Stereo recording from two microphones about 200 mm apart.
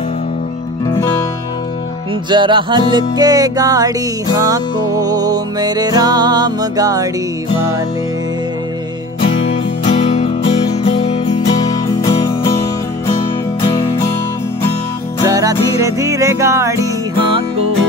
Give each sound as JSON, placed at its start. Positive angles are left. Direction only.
{"t": 2.2, "sound": "music", "side_deg": -25}
{"t": 9.8, "sound": "music", "side_deg": 35}
{"t": 12.0, "sound": "music", "side_deg": 15}
{"t": 15.2, "sound": "music", "side_deg": -15}